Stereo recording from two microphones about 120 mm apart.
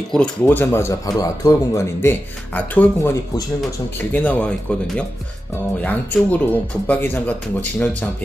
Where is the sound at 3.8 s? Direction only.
15° left (ahead or behind).